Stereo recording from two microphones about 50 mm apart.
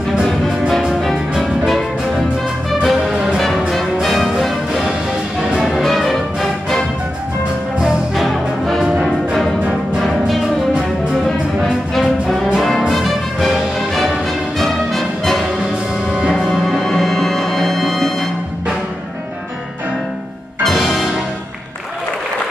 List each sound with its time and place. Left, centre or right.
2.7 s music: centre
4.1 s music: centre
7.8 s music: centre
12.5 s brass instrument: centre
12.9 s music: centre
16.1 s music: centre
16.3 s music: centre
20.6 s music: centre